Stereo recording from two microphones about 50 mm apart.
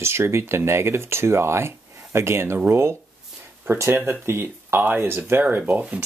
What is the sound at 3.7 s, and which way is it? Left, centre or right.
Speech, right.